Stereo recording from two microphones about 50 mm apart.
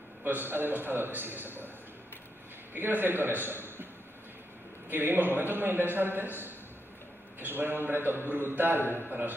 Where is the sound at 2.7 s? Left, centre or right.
Right.